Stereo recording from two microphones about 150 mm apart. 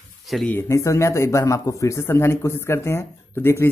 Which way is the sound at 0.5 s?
15° left (ahead or behind).